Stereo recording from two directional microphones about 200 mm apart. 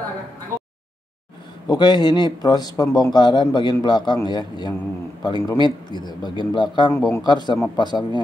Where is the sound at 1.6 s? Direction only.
20° left (ahead or behind).